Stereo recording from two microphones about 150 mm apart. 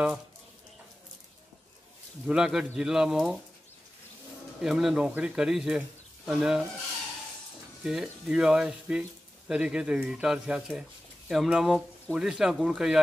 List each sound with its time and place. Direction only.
2.2 s speech: 5° right (ahead or behind)
4.6 s speech: 5° right (ahead or behind)
7.8 s speech: 5° right (ahead or behind)